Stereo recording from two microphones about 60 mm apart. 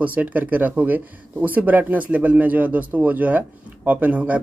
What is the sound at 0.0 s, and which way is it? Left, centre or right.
Speech, right.